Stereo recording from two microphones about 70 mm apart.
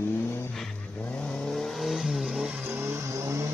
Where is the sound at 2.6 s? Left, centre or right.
Right.